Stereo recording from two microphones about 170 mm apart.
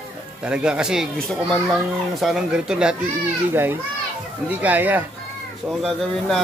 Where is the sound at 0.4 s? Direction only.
5° right (ahead or behind).